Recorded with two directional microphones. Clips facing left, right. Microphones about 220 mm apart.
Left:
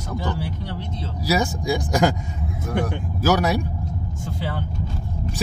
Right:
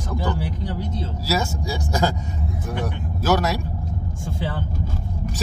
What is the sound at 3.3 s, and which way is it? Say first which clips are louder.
Speech: left 1 dB; 15° left (ahead or behind).